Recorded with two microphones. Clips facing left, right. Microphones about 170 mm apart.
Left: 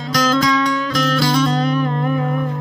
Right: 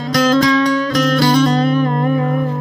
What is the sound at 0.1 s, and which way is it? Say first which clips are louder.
Music: right 4 dB; 30° right (ahead or behind).